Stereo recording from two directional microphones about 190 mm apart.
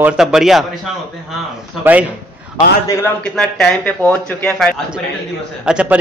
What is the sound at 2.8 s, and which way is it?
A man's voice, 10° left (ahead or behind).